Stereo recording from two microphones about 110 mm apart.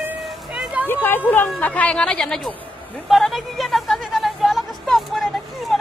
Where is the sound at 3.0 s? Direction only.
Centre (ahead or behind).